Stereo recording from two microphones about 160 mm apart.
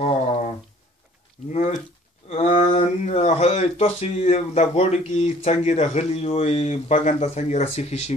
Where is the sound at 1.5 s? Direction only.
45° left (ahead or behind).